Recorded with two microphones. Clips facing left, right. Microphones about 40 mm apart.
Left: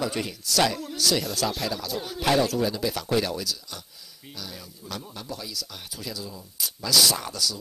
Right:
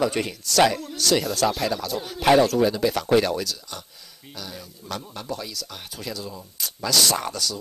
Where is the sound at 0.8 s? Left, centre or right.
Centre.